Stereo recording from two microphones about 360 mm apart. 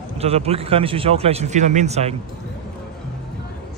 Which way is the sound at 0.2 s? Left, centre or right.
Centre.